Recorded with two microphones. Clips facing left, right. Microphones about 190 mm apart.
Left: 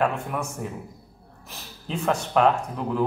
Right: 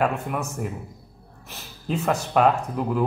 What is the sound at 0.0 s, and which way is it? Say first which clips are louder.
Speech: right 1 dB; 5° right (ahead or behind).